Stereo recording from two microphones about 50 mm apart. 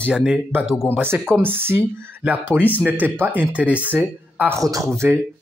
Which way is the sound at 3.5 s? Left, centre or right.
Right.